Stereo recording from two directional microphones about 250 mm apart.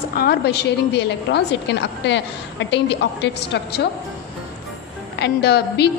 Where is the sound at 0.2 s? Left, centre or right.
Left.